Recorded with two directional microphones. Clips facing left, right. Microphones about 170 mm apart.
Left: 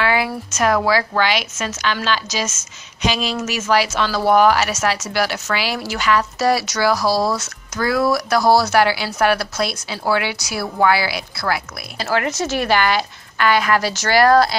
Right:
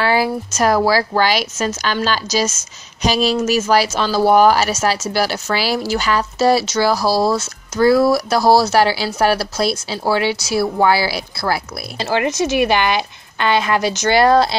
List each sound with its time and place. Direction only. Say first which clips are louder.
0.0 s speech: right 3 dB; 35° right (ahead or behind)
12.1 s a woman's voice: right 3 dB; 20° right (ahead or behind)